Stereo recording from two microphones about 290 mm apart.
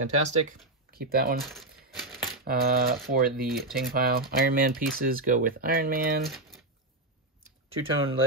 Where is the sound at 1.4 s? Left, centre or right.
Centre.